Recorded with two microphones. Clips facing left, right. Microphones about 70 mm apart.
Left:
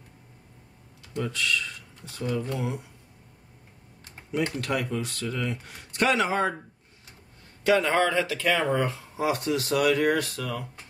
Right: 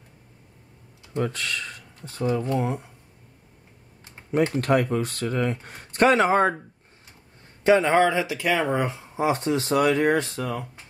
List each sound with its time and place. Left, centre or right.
1.1 s speech: right
4.6 s speech: right
7.6 s speech: right
7.9 s speech: centre